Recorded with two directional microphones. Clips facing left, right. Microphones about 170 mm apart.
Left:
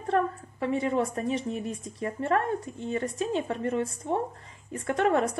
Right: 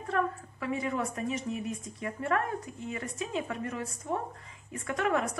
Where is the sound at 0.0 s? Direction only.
30° left (ahead or behind).